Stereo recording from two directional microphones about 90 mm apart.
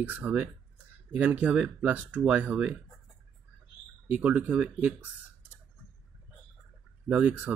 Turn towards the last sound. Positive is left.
turn(degrees=-15)  # may be behind; listen again after turning